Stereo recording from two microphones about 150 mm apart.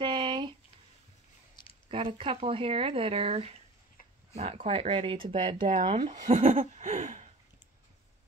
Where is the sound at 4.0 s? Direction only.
70° left (ahead or behind).